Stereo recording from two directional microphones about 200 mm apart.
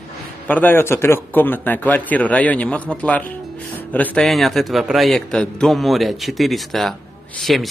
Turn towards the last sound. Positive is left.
turn(degrees=0)  # may be behind; listen again after turning